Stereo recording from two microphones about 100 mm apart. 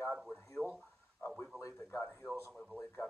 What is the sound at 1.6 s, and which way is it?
Speech, 30° left (ahead or behind).